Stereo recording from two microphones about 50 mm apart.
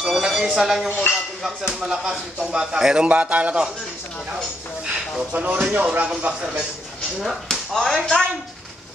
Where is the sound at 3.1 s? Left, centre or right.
Right.